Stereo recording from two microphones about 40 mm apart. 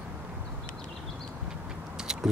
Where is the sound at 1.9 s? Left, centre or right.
Centre.